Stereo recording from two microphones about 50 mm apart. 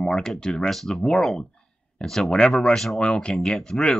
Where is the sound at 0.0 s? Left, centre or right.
Centre.